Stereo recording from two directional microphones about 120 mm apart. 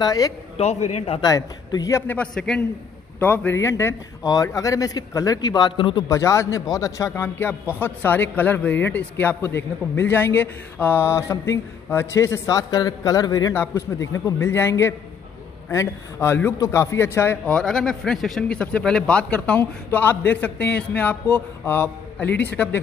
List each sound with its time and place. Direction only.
0.0 s a man's voice: 30° left (ahead or behind)
0.6 s a man's voice: 60° left (ahead or behind)
1.2 s speech: 30° left (ahead or behind)
2.1 s a man's voice: 5° left (ahead or behind); by 6.0 s 45° left (ahead or behind)
6.0 s a man's voice: 25° left (ahead or behind)
17.5 s a man's voice: 5° left (ahead or behind)